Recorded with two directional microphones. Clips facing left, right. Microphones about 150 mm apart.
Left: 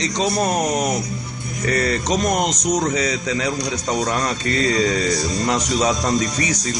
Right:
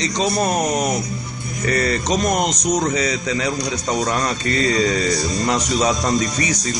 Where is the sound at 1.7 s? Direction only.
10° left (ahead or behind).